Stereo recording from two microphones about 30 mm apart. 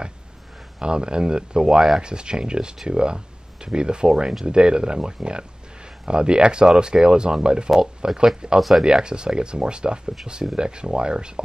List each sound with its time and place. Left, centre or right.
0.7 s speech: right
8.5 s speech: centre
8.8 s speech: right